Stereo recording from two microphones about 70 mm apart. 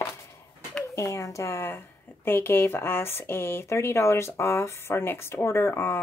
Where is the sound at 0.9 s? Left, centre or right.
Left.